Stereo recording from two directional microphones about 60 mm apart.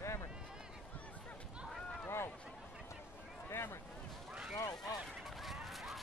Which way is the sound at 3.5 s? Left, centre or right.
Left.